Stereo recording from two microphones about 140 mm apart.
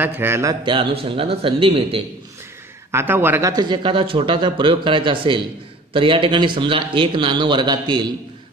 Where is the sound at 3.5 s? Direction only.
30° right (ahead or behind).